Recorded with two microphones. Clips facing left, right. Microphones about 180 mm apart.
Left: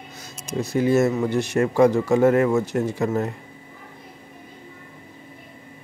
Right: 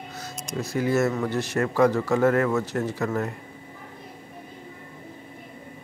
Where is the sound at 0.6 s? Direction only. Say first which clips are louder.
Left 4 dB; 20° left (ahead or behind).